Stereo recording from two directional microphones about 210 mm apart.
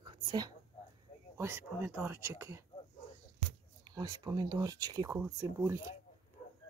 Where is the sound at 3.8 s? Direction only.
20° right (ahead or behind).